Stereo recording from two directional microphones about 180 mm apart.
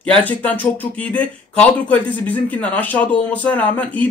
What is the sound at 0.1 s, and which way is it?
Speech, 10° left (ahead or behind).